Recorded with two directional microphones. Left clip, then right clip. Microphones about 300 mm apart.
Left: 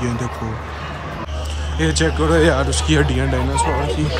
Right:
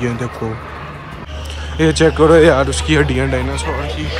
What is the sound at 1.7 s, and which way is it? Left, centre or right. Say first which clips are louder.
Speech: right 7 dB; centre.